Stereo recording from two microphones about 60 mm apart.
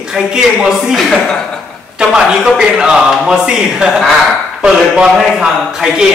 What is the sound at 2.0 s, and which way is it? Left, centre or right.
A woman's voice, centre.